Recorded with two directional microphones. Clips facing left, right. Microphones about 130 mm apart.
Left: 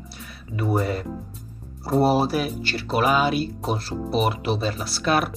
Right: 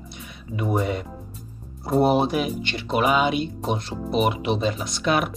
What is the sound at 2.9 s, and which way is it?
Speech, 35° left (ahead or behind).